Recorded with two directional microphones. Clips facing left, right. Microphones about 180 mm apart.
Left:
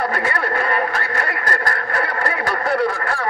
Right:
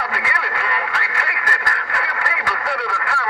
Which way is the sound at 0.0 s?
45° left (ahead or behind).